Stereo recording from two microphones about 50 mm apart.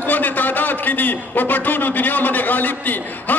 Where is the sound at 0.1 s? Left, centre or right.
Left.